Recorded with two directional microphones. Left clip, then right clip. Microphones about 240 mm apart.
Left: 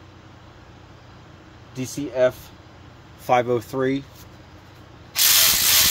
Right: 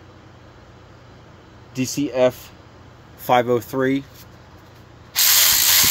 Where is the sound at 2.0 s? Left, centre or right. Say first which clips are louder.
Right 2 dB; right.